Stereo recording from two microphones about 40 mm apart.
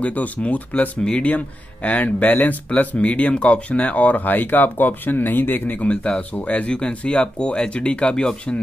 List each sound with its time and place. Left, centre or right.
0.0 s speech: left
5.9 s speech: left